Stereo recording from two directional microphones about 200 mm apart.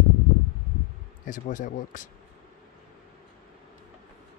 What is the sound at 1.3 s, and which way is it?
Speech, 40° left (ahead or behind).